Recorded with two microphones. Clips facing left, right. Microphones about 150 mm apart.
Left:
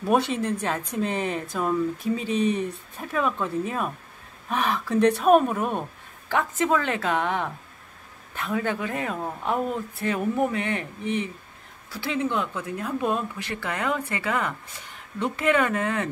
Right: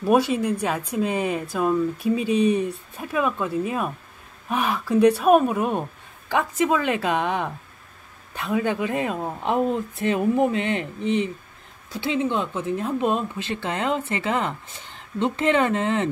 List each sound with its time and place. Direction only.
0.0 s speech: 5° right (ahead or behind); by 16.1 s 25° right (ahead or behind)